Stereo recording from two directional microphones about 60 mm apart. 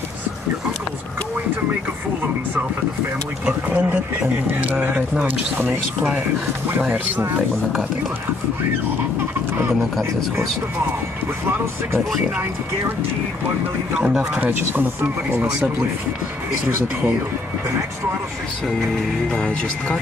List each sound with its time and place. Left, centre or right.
3.6 s speech: right
6.8 s speech: right
13.9 s speech: centre
14.4 s speech: right
19.3 s speech: left